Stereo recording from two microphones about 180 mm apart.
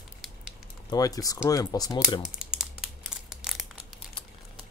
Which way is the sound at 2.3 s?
5° right (ahead or behind).